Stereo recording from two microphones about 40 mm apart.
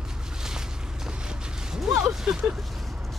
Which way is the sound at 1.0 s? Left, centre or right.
Centre.